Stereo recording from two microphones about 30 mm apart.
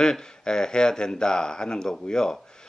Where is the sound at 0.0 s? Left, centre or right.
Left.